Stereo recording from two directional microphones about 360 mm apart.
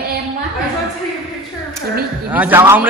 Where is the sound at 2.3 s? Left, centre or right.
Centre.